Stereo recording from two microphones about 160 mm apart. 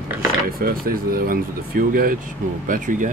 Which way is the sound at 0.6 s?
65° right (ahead or behind).